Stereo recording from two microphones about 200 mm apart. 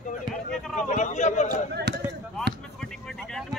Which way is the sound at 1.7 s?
55° right (ahead or behind).